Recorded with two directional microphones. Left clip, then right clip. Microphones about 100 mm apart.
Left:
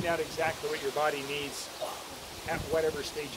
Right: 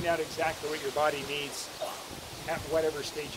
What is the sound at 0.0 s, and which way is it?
Speech, 10° right (ahead or behind).